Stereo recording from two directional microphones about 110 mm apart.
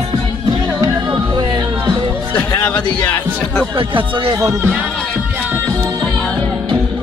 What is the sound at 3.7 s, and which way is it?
Speech, 50° right (ahead or behind).